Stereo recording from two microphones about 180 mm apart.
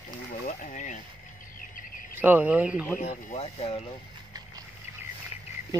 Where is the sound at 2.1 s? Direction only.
10° right (ahead or behind).